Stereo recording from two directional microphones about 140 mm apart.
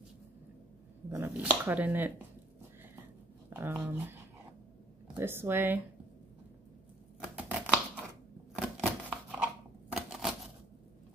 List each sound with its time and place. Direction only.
1.1 s speech: 15° right (ahead or behind)
3.4 s speech: 15° right (ahead or behind)
7.3 s a sound: 10° right (ahead or behind)
8.5 s scissors: 5° right (ahead or behind)
9.9 s typewriter: 5° right (ahead or behind)